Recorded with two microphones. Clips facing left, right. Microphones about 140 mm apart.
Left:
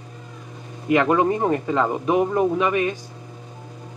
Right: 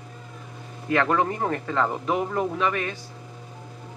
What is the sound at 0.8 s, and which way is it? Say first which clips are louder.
Speech: left 5 dB; 15° left (ahead or behind).